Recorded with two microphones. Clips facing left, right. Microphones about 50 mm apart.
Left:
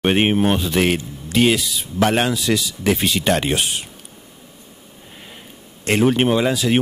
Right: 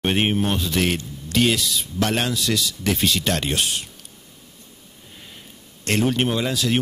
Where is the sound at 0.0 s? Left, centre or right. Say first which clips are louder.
Left 5 dB; centre.